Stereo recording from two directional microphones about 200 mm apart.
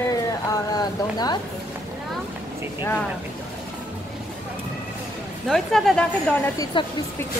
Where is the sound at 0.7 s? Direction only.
20° left (ahead or behind).